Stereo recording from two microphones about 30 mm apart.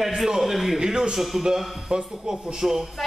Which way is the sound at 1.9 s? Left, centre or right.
Right.